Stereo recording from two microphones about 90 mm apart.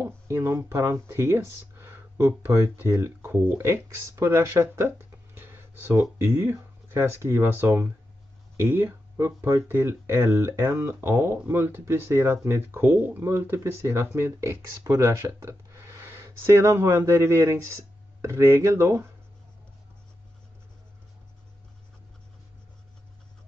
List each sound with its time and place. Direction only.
0.0 s speech: 30° right (ahead or behind)